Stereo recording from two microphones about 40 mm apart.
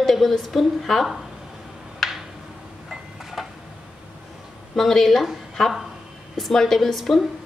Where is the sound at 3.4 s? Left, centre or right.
Centre.